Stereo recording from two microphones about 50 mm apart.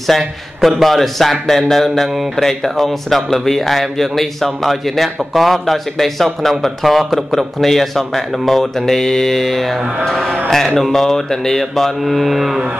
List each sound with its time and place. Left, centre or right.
0.1 s a man's voice: centre